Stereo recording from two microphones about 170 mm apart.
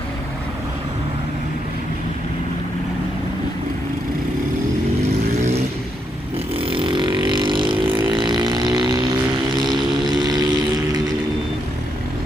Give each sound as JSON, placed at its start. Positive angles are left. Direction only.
{"t": 6.5, "sound": "vehicle", "side_deg": -30}
{"t": 9.7, "sound": "vehicle", "side_deg": 0}
{"t": 10.0, "sound": "a sound", "side_deg": -25}